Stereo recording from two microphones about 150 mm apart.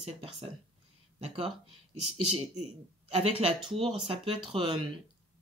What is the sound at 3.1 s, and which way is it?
Speech, 40° right (ahead or behind).